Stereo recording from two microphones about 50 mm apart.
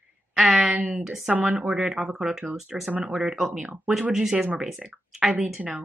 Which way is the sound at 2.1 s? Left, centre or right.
Centre.